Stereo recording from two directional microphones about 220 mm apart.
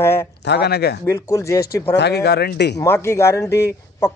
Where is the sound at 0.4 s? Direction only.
50° left (ahead or behind).